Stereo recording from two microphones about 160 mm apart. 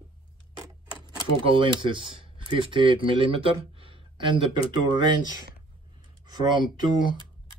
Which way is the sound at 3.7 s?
35° right (ahead or behind).